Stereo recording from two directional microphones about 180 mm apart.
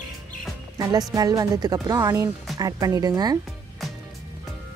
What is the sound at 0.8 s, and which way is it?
Speech, 20° right (ahead or behind).